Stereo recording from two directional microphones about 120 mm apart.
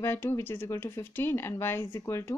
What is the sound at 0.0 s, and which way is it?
Speech, 20° left (ahead or behind).